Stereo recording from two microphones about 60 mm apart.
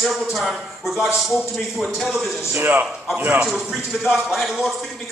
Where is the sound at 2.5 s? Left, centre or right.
Right.